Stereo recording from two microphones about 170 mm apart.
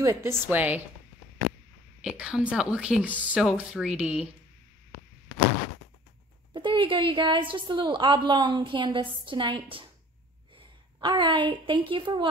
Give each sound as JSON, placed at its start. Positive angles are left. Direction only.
{"t": 0.0, "sound": "a woman's voice", "side_deg": -15}
{"t": 2.0, "sound": "speech", "side_deg": -5}
{"t": 6.5, "sound": "a woman's voice", "side_deg": -30}
{"t": 11.0, "sound": "a woman's voice", "side_deg": -30}